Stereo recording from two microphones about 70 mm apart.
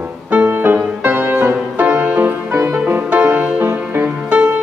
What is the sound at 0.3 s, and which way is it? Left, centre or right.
Music, right.